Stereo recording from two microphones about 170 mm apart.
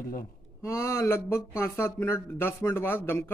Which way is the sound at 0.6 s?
15° left (ahead or behind).